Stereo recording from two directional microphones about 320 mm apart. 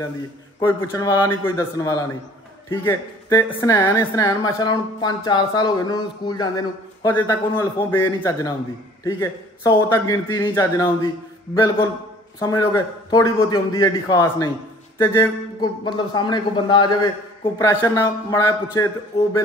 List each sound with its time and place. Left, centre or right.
0.6 s a man's voice: centre
12.4 s a man's voice: centre
19.1 s a sound: centre